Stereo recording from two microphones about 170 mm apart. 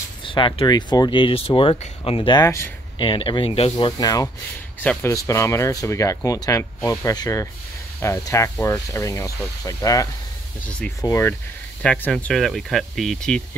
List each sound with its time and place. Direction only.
0.2 s speech: 30° left (ahead or behind)
3.0 s speech: 30° left (ahead or behind)
3.7 s speech: 20° left (ahead or behind)
11.8 s speech: 5° left (ahead or behind)